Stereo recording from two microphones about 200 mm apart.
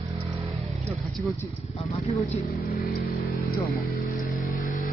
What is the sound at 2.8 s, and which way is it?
Speech, 50° left (ahead or behind).